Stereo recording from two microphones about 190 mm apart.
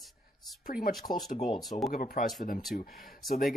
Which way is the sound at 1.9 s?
50° left (ahead or behind).